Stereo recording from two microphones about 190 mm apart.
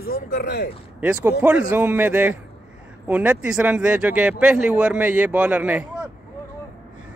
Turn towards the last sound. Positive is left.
turn(degrees=-5)  # may be behind; listen again after turning